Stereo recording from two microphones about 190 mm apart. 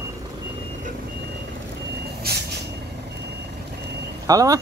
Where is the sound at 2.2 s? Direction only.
55° right (ahead or behind).